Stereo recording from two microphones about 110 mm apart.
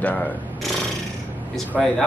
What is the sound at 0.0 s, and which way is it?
Speech, 15° left (ahead or behind).